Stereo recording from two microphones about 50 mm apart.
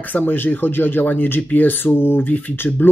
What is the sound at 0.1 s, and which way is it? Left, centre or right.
Speech, left.